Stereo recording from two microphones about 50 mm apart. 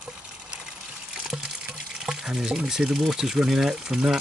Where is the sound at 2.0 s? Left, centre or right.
Centre.